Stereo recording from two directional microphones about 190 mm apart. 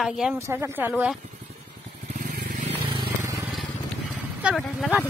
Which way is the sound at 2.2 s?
45° right (ahead or behind).